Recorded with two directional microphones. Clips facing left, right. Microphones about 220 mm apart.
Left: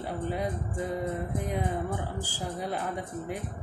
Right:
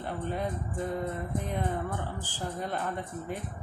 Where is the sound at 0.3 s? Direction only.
10° left (ahead or behind).